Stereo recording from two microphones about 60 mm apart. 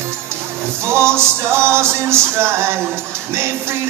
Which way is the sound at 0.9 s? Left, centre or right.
Right.